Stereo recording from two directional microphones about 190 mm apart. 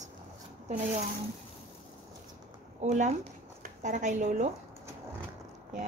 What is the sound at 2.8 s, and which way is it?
A woman's voice, 40° right (ahead or behind).